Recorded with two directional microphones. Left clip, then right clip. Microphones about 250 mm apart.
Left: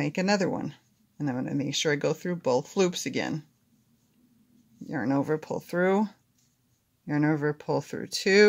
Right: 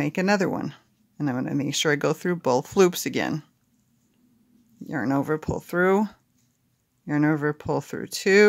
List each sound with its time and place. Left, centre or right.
0.0 s speech: centre
4.8 s speech: centre